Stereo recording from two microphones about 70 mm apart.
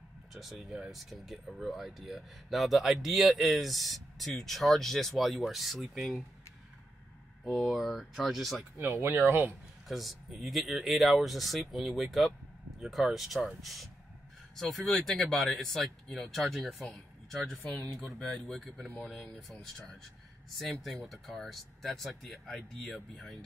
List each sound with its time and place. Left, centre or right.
0.3 s speech: centre
7.4 s speech: centre
8.7 s speech: right
9.2 s speech: right
9.8 s speech: centre